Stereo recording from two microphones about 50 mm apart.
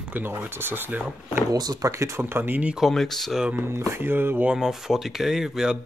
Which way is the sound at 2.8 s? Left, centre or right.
Centre.